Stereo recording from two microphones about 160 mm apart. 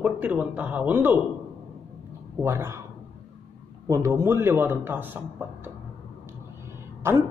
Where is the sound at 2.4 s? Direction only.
15° right (ahead or behind).